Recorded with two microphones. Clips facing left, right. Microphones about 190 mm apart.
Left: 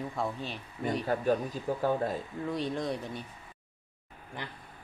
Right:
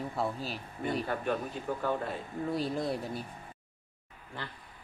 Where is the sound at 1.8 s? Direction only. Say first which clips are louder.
Left 4 dB; 40° left (ahead or behind).